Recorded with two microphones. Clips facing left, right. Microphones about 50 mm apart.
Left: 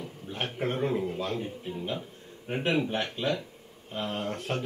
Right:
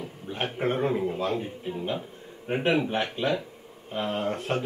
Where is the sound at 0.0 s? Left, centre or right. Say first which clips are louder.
Right 3 dB; centre.